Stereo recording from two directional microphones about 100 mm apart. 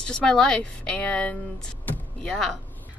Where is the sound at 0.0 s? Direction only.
10° left (ahead or behind).